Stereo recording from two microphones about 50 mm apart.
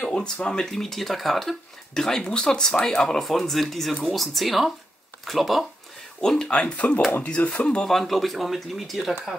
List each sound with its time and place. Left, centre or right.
0.0 s speech: centre
6.2 s speech: centre
6.6 s speech: left
7.8 s speech: centre